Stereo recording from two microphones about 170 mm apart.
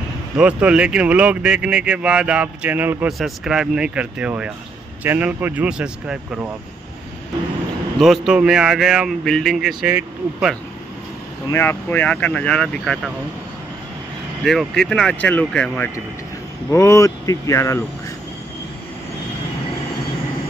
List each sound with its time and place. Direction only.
0.4 s speech: 5° right (ahead or behind)
8.0 s speech: centre (ahead or behind)
11.4 s speech: 15° left (ahead or behind)
14.4 s speech: centre (ahead or behind); by 17.8 s 20° left (ahead or behind)